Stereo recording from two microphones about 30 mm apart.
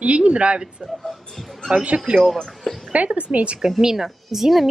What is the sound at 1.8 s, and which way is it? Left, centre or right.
Speech, right.